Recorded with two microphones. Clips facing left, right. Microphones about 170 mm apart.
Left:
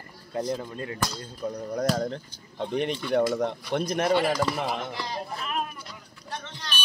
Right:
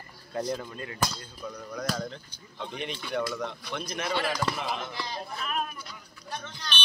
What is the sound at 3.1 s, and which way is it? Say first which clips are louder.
Speech: left 7 dB; 60° left (ahead or behind).